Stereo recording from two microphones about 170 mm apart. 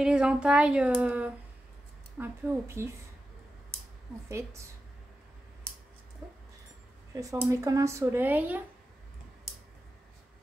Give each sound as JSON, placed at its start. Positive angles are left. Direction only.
{"t": 0.0, "sound": "speech", "side_deg": -5}
{"t": 4.3, "sound": "speech", "side_deg": -15}
{"t": 7.2, "sound": "speech", "side_deg": -20}